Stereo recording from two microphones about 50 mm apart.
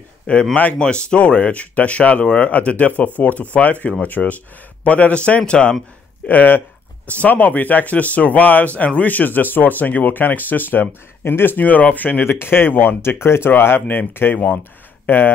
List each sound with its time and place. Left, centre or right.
0.6 s speech: left
6.2 s speech: left
11.5 s speech: left
14.6 s a sound: left